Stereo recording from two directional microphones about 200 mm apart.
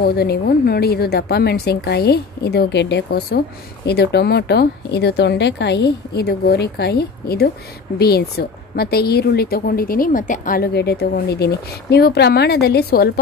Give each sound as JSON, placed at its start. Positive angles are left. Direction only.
{"t": 0.0, "sound": "a woman's voice", "side_deg": 55}